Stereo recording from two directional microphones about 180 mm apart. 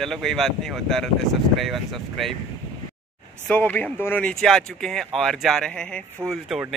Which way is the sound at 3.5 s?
10° left (ahead or behind).